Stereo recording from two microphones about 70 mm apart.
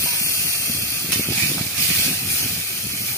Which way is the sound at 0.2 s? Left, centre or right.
Left.